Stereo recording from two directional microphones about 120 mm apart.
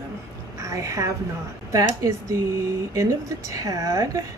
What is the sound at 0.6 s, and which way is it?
A woman's voice, 25° right (ahead or behind).